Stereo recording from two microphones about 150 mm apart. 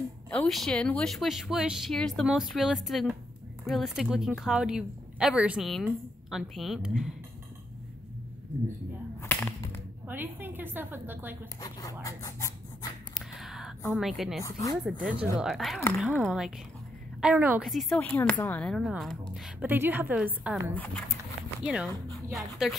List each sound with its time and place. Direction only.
0.3 s speech: 5° left (ahead or behind)
9.2 s whip: 15° left (ahead or behind)
10.0 s a woman's voice: 15° right (ahead or behind)
12.0 s a sound: 25° left (ahead or behind)
13.1 s a sound: centre (ahead or behind)
13.9 s speech: centre (ahead or behind)
14.4 s speech: 25° left (ahead or behind)
14.9 s a woman's voice: 5° right (ahead or behind)
17.6 s speech: centre (ahead or behind)
19.7 s a woman's voice: 15° right (ahead or behind)
20.7 s speech: 10° left (ahead or behind)
21.6 s a woman's voice: 5° right (ahead or behind)